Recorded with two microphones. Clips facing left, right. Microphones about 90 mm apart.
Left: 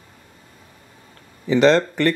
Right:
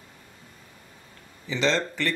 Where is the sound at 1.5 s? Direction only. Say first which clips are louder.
Left 10 dB; 55° left (ahead or behind).